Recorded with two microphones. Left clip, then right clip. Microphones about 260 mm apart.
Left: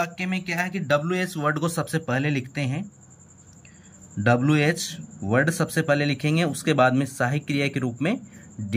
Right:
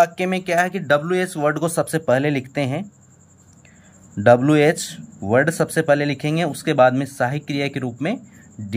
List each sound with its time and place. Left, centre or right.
0.0 s speech: centre
4.2 s speech: centre